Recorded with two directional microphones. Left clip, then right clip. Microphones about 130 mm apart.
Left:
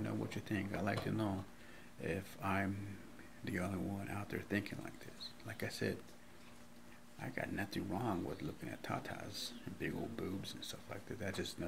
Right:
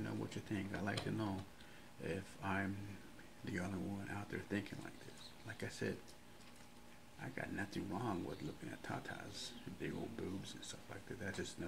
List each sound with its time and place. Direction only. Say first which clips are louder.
0.0 s speech: left 3 dB; 15° left (ahead or behind)
7.2 s speech: left 3 dB; 20° left (ahead or behind)